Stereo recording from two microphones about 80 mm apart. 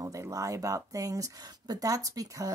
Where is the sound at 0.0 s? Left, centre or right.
Right.